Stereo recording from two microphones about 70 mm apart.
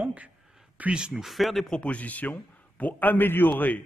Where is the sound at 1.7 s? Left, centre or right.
Centre.